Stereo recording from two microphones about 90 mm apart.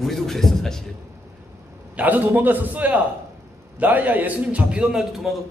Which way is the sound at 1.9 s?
20° right (ahead or behind).